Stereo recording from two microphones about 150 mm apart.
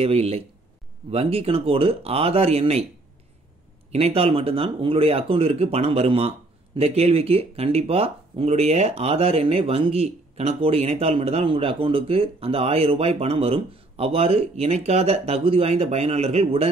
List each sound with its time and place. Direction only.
0.0 s speech: 40° right (ahead or behind)
3.9 s speech: 40° right (ahead or behind)